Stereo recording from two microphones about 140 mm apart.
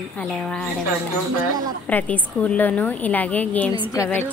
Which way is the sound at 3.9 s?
20° left (ahead or behind).